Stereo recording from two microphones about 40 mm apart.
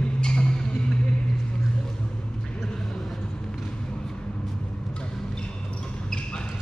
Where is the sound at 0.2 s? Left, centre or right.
Left.